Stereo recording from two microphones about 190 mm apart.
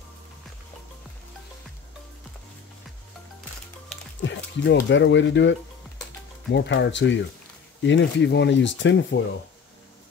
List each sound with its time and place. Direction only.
4.2 s speech: 75° left (ahead or behind)